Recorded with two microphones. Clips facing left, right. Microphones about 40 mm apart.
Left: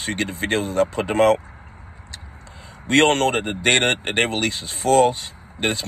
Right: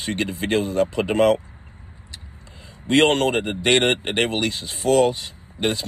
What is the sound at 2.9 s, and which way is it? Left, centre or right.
Speech, left.